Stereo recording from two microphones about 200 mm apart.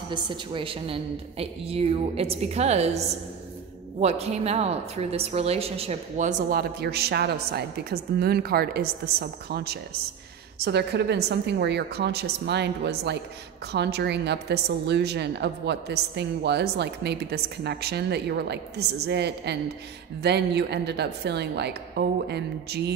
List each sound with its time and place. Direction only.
0.1 s a woman's voice: 25° right (ahead or behind)
4.0 s a woman's voice: 30° right (ahead or behind)
6.8 s a woman's voice: 55° right (ahead or behind)